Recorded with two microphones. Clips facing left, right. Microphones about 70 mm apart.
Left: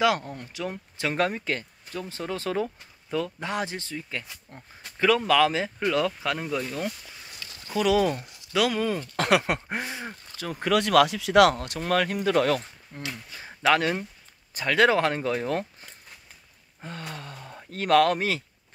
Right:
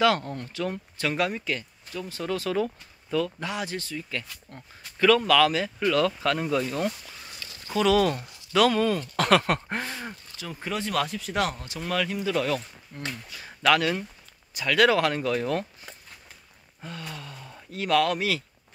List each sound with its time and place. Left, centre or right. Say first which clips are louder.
0.0 s speech: right 1 dB; centre
1.1 s speech: left 2 dB; left
4.2 s speech: right 1 dB; centre
6.4 s speech: right 3 dB; centre
7.4 s a sound: left 1 dB; right
7.7 s speech: right 1 dB; centre
9.1 s speech: even; left
10.3 s speech: left 9 dB; left
11.8 s speech: left 3 dB; left
12.9 s speech: right 1 dB; left
16.8 s gasp: left 1 dB; left
17.6 s speech: left 3 dB; left